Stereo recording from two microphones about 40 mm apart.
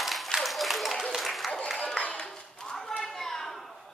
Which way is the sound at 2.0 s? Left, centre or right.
Left.